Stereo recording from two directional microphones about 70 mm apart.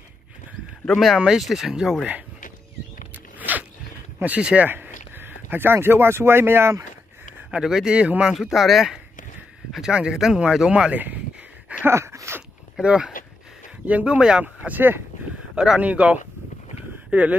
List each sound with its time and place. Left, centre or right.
0.8 s speech: centre
3.3 s zipper: right
4.2 s speech: centre
4.6 s speech: right
7.5 s speech: centre
8.3 s speech: centre
11.8 s a sound: right
12.8 s speech: centre
15.5 s speech: centre